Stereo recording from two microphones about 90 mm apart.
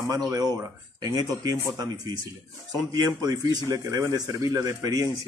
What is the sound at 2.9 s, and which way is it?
A man's voice, 45° right (ahead or behind).